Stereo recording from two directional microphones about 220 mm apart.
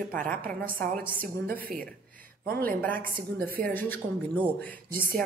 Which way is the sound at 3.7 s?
10° left (ahead or behind).